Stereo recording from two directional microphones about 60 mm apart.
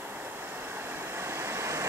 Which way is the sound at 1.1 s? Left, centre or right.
Right.